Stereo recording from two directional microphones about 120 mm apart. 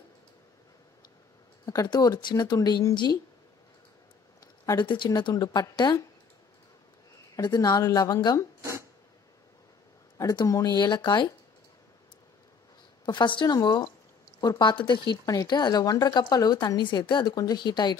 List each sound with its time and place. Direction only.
1.7 s speech: 30° left (ahead or behind)
4.7 s speech: 40° left (ahead or behind)
7.3 s speech: 35° left (ahead or behind)
10.2 s speech: 35° left (ahead or behind)
13.0 s speech: 40° left (ahead or behind)